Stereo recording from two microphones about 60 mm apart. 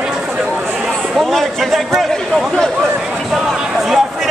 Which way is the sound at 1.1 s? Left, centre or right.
Centre.